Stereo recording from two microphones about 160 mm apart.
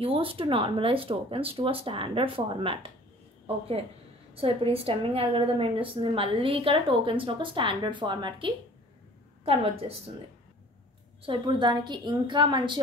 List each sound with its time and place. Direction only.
0.0 s a woman's voice: 35° right (ahead or behind)
11.2 s a woman's voice: 30° right (ahead or behind)